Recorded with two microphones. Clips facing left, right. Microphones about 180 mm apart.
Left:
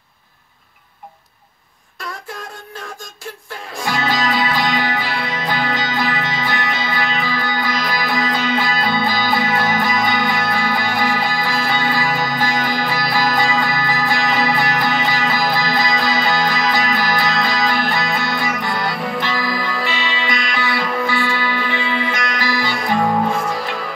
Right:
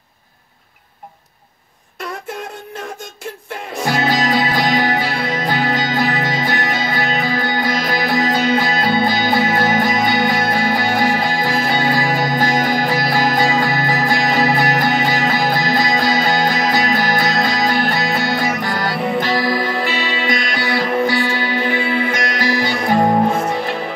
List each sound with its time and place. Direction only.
3.8 s music: 45° right (ahead or behind)